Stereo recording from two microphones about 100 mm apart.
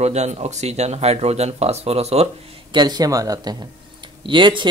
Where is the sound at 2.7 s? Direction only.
45° right (ahead or behind).